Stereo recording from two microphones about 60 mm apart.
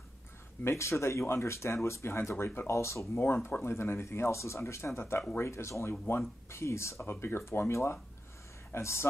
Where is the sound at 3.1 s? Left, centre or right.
Left.